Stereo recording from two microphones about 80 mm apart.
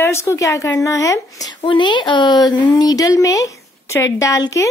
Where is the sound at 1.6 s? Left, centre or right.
Left.